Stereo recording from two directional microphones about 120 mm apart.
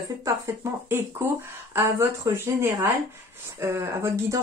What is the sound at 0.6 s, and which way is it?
Speech, 25° right (ahead or behind).